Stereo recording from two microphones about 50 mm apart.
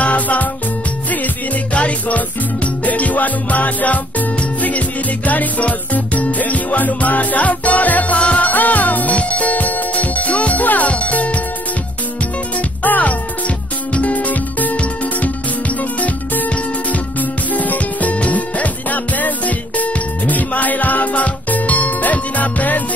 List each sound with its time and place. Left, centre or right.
0.0 s music: left
12.8 s music: left
16.9 s music: left